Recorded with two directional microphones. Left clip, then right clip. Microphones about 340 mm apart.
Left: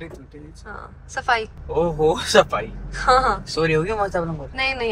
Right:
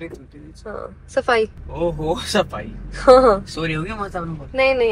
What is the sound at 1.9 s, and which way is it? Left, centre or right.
Speech, centre.